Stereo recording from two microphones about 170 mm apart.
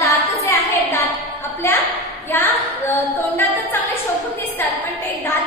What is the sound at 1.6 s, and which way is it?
Speech, 15° left (ahead or behind).